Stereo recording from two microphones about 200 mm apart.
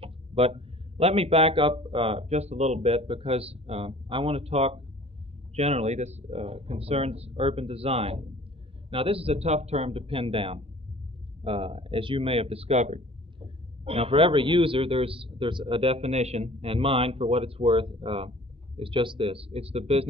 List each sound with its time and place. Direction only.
0.0 s speech: 30° right (ahead or behind)